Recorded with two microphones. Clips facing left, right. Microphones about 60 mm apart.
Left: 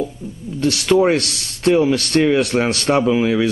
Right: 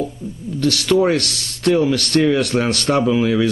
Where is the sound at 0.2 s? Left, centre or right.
Centre.